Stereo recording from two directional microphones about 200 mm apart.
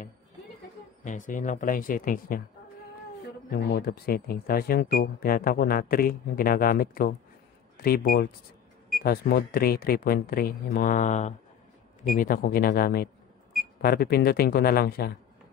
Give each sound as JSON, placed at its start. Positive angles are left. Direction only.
{"t": 1.0, "sound": "speech", "side_deg": 40}
{"t": 3.4, "sound": "speech", "side_deg": 45}